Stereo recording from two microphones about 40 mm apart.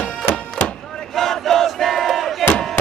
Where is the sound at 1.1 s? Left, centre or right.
Centre.